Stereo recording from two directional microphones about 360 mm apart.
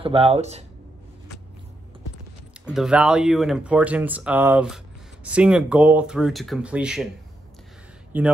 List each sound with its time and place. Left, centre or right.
0.0 s speech: centre
2.6 s speech: centre
8.1 s speech: centre